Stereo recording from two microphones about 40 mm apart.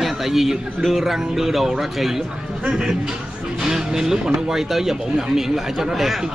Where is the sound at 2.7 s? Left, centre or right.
Right.